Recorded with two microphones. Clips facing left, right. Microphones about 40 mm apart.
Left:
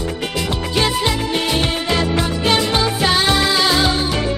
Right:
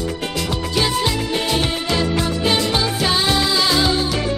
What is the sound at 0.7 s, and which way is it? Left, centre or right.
Music, centre.